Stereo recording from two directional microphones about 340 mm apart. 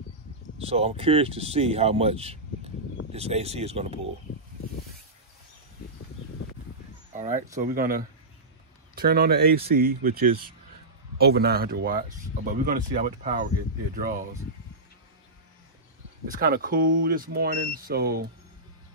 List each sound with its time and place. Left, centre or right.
0.7 s speech: centre
7.2 s speech: right
16.3 s speech: right